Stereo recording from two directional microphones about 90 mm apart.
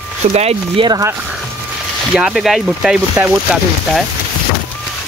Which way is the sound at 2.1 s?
5° right (ahead or behind).